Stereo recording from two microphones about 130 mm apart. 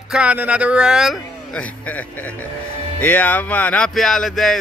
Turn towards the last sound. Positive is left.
turn(degrees=0)  # may be behind; listen again after turning